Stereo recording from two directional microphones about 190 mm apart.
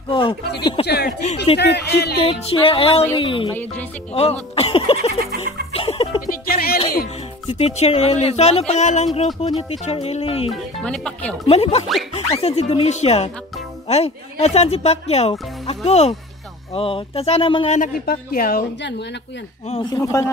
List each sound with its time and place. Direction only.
0.1 s speech: 30° left (ahead or behind)
0.8 s speech: 55° left (ahead or behind)
1.2 s speech: 35° left (ahead or behind)
1.6 s speech: 65° left (ahead or behind)
2.2 s speech: 30° left (ahead or behind)
5.7 s music: 30° left (ahead or behind)
6.2 s music: 50° left (ahead or behind)
7.4 s speech: 30° left (ahead or behind)
10.5 s speech: 5° left (ahead or behind)
11.4 s speech: 30° left (ahead or behind)
17.7 s speech: 45° left (ahead or behind)
18.8 s speech: 65° left (ahead or behind)
19.7 s speech: 20° left (ahead or behind)